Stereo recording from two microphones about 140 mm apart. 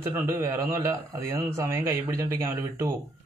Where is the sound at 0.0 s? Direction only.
20° right (ahead or behind).